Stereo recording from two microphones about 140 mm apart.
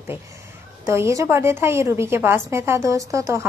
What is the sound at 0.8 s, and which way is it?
A woman's voice, 20° right (ahead or behind).